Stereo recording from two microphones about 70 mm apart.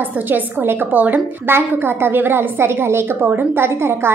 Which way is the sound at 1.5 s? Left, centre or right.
Right.